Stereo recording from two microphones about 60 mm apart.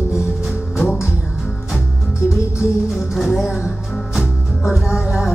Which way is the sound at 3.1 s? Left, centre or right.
Centre.